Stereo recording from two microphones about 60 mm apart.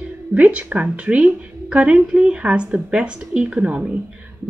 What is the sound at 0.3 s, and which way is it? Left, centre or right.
A woman's voice, right.